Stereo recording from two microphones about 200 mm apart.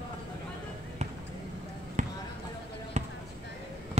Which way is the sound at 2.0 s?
35° right (ahead or behind).